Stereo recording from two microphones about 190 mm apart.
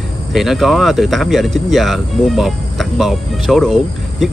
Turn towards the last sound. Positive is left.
turn(degrees=0)  # may be behind; listen again after turning